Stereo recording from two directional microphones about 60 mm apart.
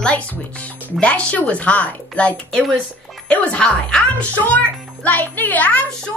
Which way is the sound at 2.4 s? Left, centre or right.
Centre.